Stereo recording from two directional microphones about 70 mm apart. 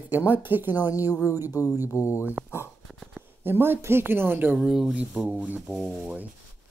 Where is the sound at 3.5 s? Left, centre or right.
Right.